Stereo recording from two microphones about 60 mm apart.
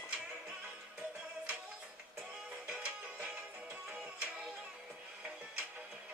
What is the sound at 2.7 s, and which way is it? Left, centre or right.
Music, right.